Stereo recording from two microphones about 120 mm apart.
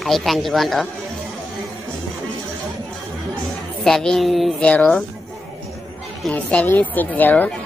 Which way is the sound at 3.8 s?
5° left (ahead or behind).